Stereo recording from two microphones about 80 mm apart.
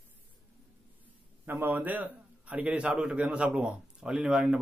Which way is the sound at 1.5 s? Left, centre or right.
Right.